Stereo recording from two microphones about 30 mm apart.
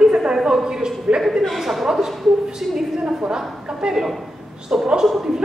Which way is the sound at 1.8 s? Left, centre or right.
Centre.